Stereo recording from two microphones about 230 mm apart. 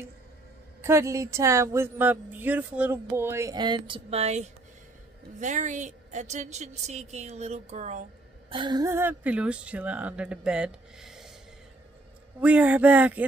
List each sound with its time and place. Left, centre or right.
0.8 s a woman's voice: centre
12.4 s speech: centre